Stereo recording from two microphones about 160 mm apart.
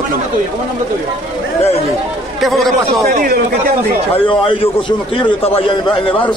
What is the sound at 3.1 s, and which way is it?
Speech, 65° right (ahead or behind).